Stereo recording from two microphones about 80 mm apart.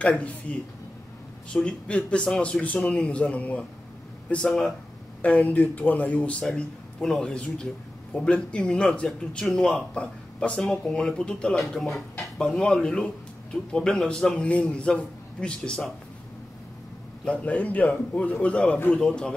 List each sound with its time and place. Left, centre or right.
0.0 s speech: centre
4.5 s speech: centre
5.2 s speech: centre
17.2 s speech: centre